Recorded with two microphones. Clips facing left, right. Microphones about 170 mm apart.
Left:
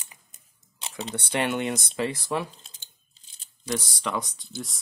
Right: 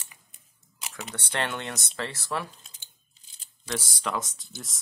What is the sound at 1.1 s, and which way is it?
Speech, 15° left (ahead or behind).